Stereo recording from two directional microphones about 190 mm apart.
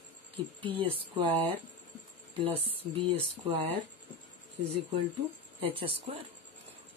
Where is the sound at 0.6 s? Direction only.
25° right (ahead or behind).